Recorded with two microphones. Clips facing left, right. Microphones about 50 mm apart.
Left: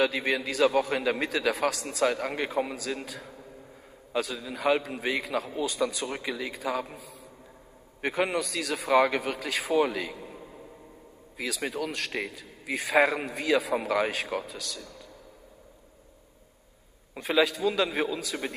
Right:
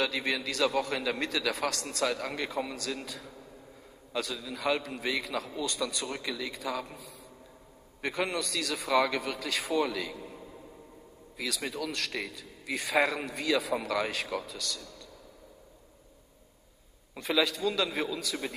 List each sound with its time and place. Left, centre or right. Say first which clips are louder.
0.0 s a man's voice: left 4 dB; centre
8.0 s a man's voice: left 4 dB; left
9.6 s a man's voice: left 5 dB; centre
9.8 s a man's voice: left 3 dB; left
10.1 s a sound: left 1 dB; centre
11.4 s a man's voice: left 3 dB; centre
17.1 s a man's voice: left 4 dB; centre
18.4 s speech: left 3 dB; left